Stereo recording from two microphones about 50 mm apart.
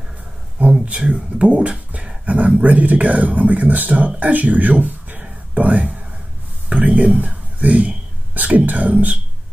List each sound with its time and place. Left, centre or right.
0.8 s speech: right
6.7 s a sound: right
8.4 s speech: right